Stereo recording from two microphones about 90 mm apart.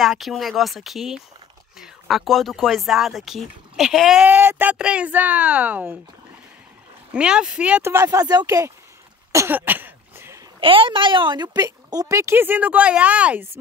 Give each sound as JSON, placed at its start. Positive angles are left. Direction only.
{"t": 0.0, "sound": "speech", "side_deg": 0}
{"t": 4.3, "sound": "speech", "side_deg": -25}
{"t": 4.7, "sound": "a woman's voice", "side_deg": -10}
{"t": 7.1, "sound": "a woman's voice", "side_deg": -10}
{"t": 7.8, "sound": "speech", "side_deg": -35}
{"t": 9.5, "sound": "cough", "side_deg": -20}
{"t": 10.6, "sound": "a child's voice", "side_deg": -75}
{"t": 11.6, "sound": "speech", "side_deg": -40}